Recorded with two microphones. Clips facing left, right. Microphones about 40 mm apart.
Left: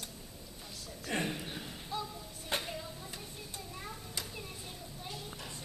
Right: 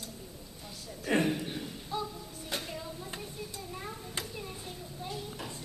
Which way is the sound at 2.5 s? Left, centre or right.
Left.